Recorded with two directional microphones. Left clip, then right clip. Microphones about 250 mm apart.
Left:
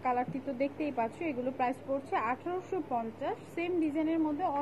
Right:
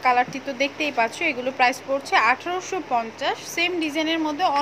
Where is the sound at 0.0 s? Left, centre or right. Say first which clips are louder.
Right 12 dB; centre.